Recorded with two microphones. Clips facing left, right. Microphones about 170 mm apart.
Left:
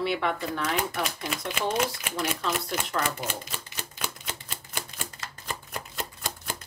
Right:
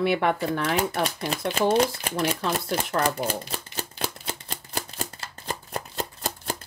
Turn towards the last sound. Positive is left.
turn(degrees=-35)  # may be behind; listen again after turning